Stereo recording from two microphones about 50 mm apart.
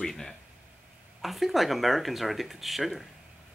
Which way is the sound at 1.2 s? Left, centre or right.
Centre.